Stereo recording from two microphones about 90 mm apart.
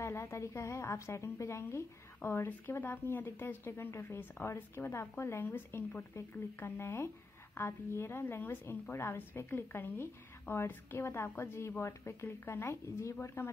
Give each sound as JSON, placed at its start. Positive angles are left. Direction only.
{"t": 0.0, "sound": "a woman's voice", "side_deg": 30}